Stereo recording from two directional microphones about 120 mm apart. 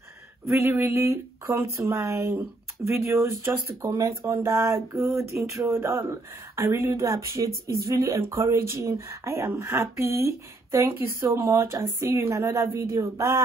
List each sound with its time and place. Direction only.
0.5 s speech: 25° right (ahead or behind)